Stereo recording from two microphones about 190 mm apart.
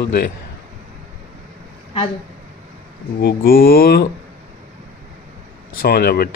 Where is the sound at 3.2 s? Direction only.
50° left (ahead or behind).